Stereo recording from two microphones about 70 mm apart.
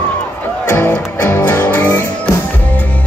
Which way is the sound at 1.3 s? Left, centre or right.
Left.